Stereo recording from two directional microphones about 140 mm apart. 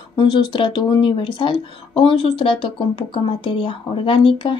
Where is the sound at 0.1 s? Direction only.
35° left (ahead or behind).